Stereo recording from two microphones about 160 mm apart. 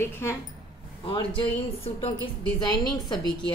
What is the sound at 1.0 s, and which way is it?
Speech, 30° left (ahead or behind).